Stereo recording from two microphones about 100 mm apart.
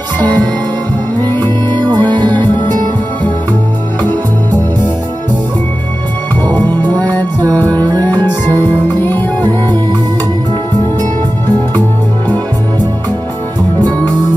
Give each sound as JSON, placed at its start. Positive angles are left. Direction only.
{"t": 1.7, "sound": "music", "side_deg": -45}
{"t": 6.4, "sound": "music", "side_deg": 15}
{"t": 9.0, "sound": "music", "side_deg": 20}